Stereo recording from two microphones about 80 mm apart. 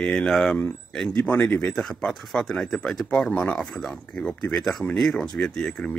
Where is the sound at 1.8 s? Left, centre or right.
Centre.